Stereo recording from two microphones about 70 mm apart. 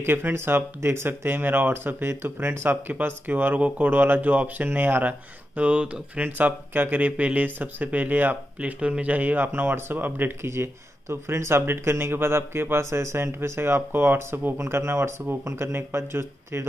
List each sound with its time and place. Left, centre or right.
0.0 s speech: right
5.6 s speech: centre; by 16.6 s right